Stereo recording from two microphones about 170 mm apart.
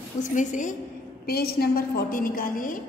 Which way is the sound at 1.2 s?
65° left (ahead or behind).